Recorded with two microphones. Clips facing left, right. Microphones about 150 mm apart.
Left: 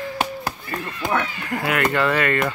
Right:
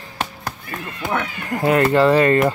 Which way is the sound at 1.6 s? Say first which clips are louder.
Right 6 dB; 30° right (ahead or behind).